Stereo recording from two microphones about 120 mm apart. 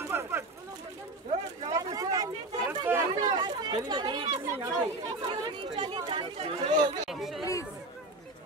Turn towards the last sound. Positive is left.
turn(degrees=0)  # may be behind; listen again after turning